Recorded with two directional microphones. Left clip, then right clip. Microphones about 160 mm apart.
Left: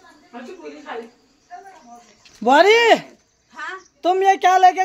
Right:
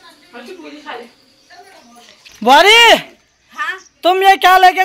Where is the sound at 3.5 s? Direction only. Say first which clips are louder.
Right 9 dB; 30° left (ahead or behind).